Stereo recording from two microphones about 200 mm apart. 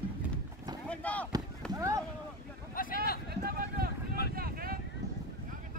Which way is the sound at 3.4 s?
50° right (ahead or behind).